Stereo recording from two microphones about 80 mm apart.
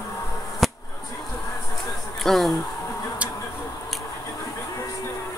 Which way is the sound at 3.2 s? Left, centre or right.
Centre.